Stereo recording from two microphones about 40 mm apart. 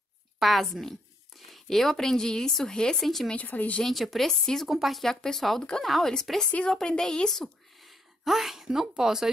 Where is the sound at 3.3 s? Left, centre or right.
Left.